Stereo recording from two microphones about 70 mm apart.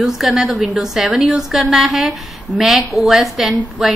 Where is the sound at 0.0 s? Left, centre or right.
Centre.